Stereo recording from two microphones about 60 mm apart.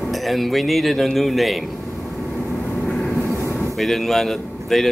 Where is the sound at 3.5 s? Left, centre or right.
Centre.